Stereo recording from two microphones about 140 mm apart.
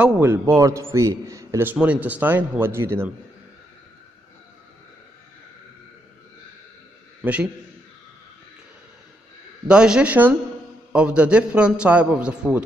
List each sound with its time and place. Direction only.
0.0 s a man's voice: 15° right (ahead or behind)
7.2 s a man's voice: 10° right (ahead or behind)
9.7 s a man's voice: 5° right (ahead or behind)